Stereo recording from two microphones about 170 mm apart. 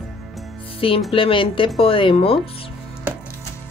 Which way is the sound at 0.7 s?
35° left (ahead or behind).